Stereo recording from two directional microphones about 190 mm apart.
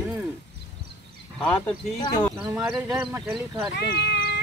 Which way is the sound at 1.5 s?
20° left (ahead or behind).